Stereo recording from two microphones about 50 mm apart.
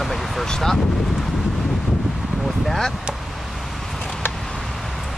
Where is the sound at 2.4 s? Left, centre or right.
Centre.